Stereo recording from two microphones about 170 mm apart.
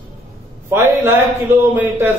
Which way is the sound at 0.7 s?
15° right (ahead or behind).